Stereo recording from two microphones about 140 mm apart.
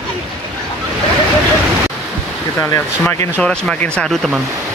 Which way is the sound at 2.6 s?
15° left (ahead or behind).